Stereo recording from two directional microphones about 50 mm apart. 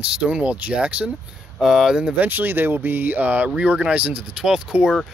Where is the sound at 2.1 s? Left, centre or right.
Right; by 4.9 s centre.